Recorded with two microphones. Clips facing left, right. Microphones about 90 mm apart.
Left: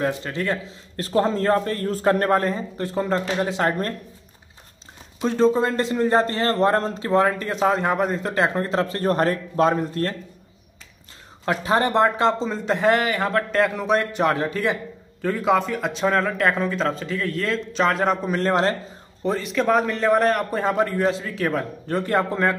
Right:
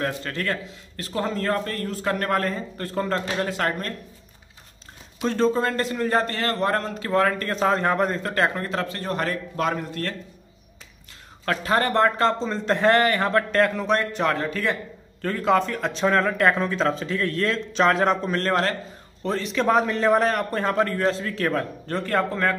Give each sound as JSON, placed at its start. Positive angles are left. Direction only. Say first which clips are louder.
{"t": 0.0, "sound": "speech", "louder": "left 3 dB", "side_deg": 15}
{"t": 0.9, "sound": "a man's voice", "louder": "left 6 dB", "side_deg": 35}
{"t": 1.9, "sound": "a man's voice", "louder": "left 7 dB", "side_deg": 35}
{"t": 5.2, "sound": "a man's voice", "louder": "left 3 dB", "side_deg": 15}
{"t": 11.4, "sound": "speech", "louder": "left 2 dB", "side_deg": 20}